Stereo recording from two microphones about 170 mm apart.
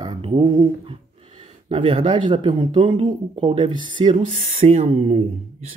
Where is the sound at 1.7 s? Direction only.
30° right (ahead or behind).